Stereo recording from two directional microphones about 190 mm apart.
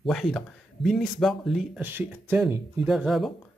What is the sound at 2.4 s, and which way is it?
Speech, centre (ahead or behind).